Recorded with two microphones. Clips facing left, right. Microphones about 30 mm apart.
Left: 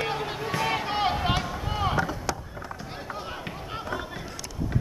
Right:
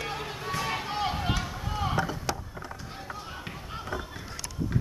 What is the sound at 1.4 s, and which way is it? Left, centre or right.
Run, centre.